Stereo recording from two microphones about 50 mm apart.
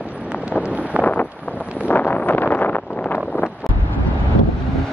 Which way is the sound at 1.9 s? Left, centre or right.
Left.